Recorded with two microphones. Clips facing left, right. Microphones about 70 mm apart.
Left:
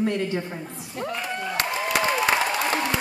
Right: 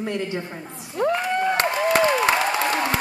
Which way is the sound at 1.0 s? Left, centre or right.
Right.